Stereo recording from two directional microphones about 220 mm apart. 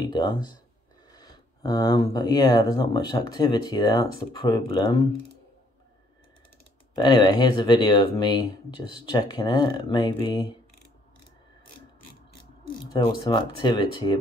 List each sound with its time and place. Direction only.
0.1 s speech: 20° left (ahead or behind)
7.0 s speech: 20° left (ahead or behind)
12.7 s speech: 15° left (ahead or behind)